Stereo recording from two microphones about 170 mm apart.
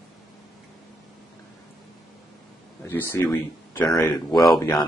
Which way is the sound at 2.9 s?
10° left (ahead or behind).